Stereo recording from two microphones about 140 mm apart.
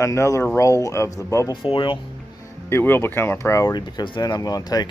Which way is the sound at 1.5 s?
35° left (ahead or behind).